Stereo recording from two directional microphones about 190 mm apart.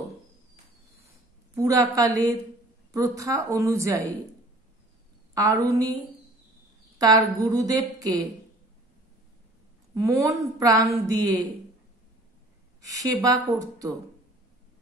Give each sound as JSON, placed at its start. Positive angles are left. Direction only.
{"t": 1.5, "sound": "a woman's voice", "side_deg": -15}
{"t": 5.3, "sound": "a woman's voice", "side_deg": -15}
{"t": 7.0, "sound": "a woman's voice", "side_deg": -20}
{"t": 9.9, "sound": "a woman's voice", "side_deg": -15}
{"t": 12.8, "sound": "a woman's voice", "side_deg": -20}